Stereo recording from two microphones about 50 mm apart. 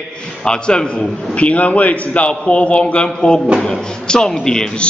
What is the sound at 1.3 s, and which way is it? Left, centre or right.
A man's voice, left.